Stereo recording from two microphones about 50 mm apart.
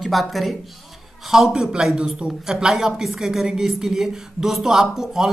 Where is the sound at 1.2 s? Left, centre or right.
Centre.